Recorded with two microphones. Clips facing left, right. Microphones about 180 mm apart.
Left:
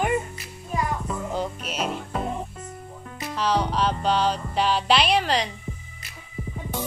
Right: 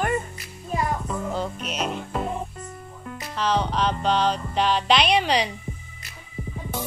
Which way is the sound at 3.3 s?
10° left (ahead or behind).